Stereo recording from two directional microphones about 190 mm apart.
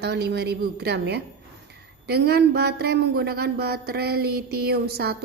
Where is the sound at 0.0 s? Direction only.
60° right (ahead or behind).